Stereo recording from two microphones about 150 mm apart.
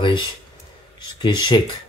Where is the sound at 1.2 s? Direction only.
30° left (ahead or behind).